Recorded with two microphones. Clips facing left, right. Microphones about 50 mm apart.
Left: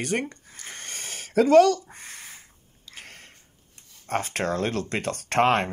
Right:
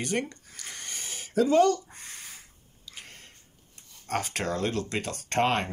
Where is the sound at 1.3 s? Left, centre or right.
Left.